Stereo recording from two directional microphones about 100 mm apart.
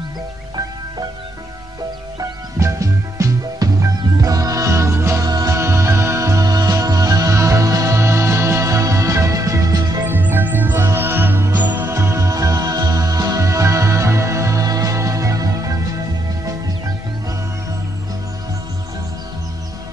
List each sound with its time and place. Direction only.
2.1 s music: 30° right (ahead or behind)
5.6 s music: 30° right (ahead or behind)
10.0 s music: 20° right (ahead or behind)
11.9 s music: 30° right (ahead or behind)